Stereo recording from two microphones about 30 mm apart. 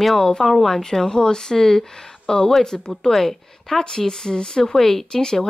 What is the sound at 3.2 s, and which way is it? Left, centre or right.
Speech, centre.